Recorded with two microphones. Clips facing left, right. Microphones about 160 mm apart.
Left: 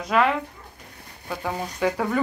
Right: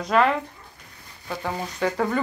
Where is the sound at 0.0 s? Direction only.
5° left (ahead or behind).